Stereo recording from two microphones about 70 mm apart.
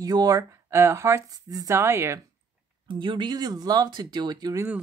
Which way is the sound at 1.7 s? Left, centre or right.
Right.